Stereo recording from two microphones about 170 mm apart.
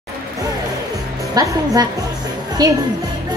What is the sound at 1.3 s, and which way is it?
Speech, 20° right (ahead or behind).